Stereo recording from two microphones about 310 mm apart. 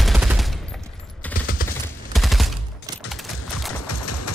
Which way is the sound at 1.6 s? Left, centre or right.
Left.